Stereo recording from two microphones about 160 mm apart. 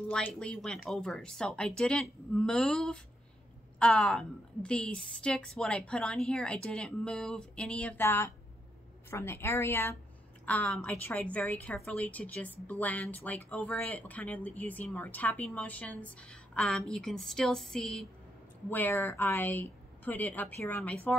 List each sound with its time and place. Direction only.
0.1 s a woman's voice: 5° left (ahead or behind)